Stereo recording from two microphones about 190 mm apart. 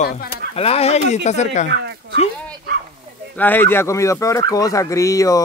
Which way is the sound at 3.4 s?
10° left (ahead or behind).